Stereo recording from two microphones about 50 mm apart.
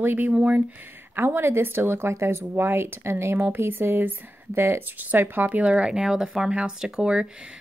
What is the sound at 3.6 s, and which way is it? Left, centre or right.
Speech, right.